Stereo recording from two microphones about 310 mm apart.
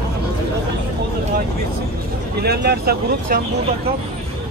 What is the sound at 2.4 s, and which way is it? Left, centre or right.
Speech, right.